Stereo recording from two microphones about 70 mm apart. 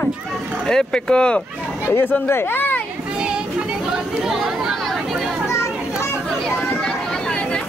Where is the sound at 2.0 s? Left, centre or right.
Left.